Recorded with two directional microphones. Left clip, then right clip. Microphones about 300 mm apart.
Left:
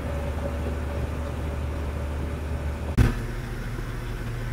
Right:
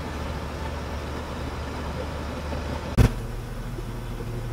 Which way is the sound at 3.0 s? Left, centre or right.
Centre.